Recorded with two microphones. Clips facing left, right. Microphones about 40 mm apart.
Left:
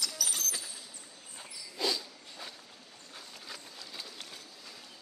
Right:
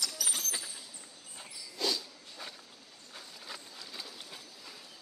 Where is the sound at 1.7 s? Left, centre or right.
Centre.